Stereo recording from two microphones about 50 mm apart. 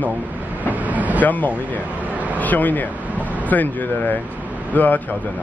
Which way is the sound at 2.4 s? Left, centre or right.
Left.